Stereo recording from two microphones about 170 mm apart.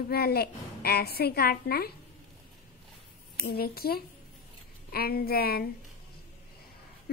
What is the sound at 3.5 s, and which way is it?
A woman's voice, 65° left (ahead or behind).